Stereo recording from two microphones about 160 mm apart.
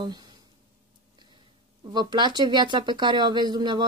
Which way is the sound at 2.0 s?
30° right (ahead or behind).